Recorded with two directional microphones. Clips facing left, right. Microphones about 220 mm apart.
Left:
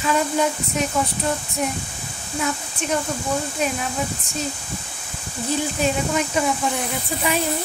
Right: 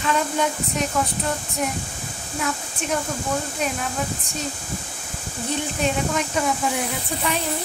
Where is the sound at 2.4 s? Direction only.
Centre (ahead or behind).